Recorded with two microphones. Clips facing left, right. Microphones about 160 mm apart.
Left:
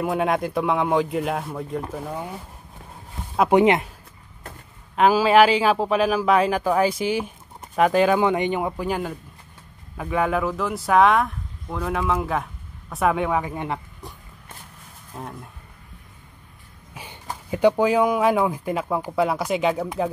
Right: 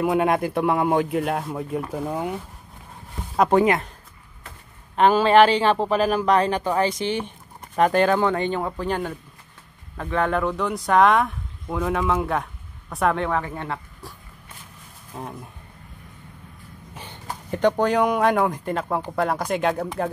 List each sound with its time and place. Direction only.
0.0 s a man's voice: centre (ahead or behind)
1.9 s speech: 15° right (ahead or behind)
3.5 s speech: 20° left (ahead or behind)
4.9 s a man's voice: 5° left (ahead or behind)
15.1 s a man's voice: centre (ahead or behind)
16.9 s speech: 10° left (ahead or behind)